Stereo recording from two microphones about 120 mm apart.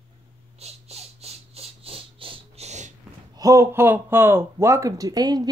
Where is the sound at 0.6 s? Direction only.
60° right (ahead or behind).